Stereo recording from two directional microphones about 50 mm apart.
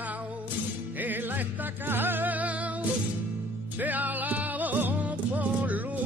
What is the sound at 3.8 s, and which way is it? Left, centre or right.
Music, right.